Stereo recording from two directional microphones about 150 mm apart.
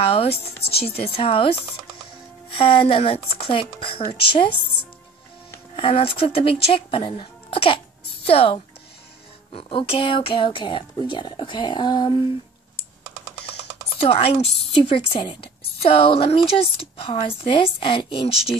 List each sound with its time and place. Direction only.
0.0 s a woman's voice: 40° left (ahead or behind)
5.8 s a woman's voice: 35° left (ahead or behind)
14.0 s a woman's voice: 40° left (ahead or behind)